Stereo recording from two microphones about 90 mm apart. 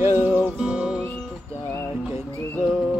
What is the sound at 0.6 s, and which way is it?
Music, 10° right (ahead or behind).